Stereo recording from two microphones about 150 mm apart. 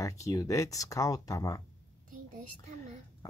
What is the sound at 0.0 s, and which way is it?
Speech, 20° left (ahead or behind).